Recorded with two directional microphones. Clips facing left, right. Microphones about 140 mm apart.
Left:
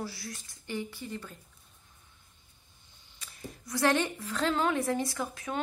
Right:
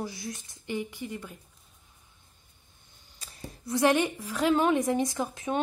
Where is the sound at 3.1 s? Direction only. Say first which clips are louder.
Even; 25° right (ahead or behind).